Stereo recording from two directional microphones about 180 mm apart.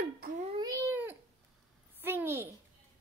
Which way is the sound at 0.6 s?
20° right (ahead or behind).